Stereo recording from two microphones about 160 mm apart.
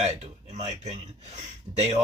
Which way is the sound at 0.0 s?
45° right (ahead or behind).